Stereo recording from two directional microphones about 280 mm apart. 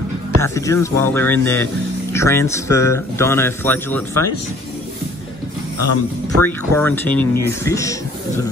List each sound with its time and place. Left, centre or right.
0.4 s a man's voice: centre
5.8 s speech: left
6.4 s a man's voice: centre